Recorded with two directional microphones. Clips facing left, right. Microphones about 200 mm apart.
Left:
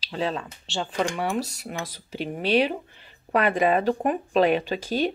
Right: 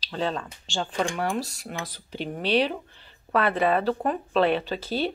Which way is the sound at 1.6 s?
10° left (ahead or behind).